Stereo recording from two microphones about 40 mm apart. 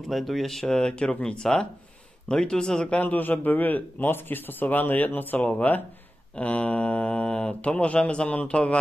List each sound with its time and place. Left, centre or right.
0.1 s speech: centre
3.0 s speech: left
5.4 s speech: left